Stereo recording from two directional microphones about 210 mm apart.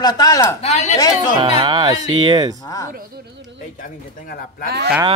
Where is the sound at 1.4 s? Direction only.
20° right (ahead or behind).